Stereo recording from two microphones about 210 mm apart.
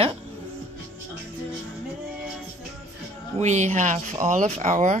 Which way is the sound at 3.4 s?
35° right (ahead or behind).